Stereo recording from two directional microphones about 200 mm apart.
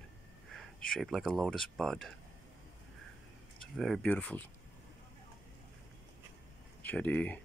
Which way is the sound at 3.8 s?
5° left (ahead or behind).